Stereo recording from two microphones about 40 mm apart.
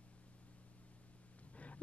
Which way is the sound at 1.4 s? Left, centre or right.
Left.